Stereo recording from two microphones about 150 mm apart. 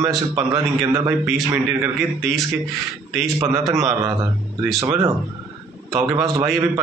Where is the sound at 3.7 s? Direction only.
20° right (ahead or behind).